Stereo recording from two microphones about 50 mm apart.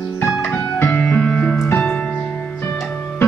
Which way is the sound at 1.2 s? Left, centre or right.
Left.